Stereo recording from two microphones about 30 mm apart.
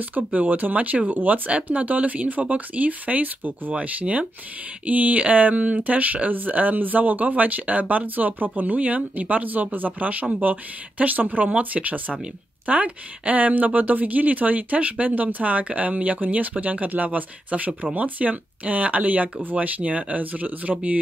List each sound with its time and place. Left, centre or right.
0.1 s speech: right
1.5 s speech: right
3.7 s speech: right
4.8 s speech: right
5.6 s speech: right
8.7 s speech: right
10.4 s speech: right
19.6 s speech: right